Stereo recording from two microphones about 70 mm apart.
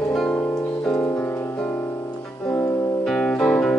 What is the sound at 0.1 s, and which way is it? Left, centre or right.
Music, centre.